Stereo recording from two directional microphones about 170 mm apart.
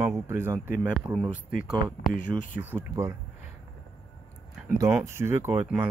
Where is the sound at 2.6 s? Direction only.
15° right (ahead or behind).